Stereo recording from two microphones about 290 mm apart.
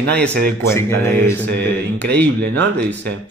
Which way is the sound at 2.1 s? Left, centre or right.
Right.